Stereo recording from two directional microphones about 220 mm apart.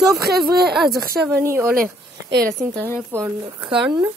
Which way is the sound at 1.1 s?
10° right (ahead or behind).